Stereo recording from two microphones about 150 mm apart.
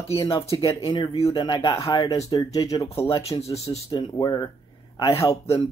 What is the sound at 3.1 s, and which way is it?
Speech, 40° left (ahead or behind).